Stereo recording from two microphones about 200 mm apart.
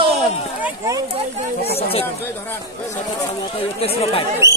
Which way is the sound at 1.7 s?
30° left (ahead or behind).